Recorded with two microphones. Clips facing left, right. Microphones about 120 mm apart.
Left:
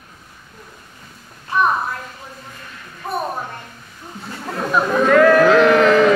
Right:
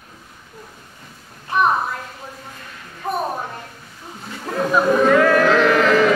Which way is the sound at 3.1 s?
15° right (ahead or behind).